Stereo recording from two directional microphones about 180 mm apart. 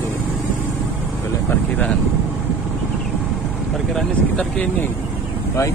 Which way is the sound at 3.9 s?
5° left (ahead or behind).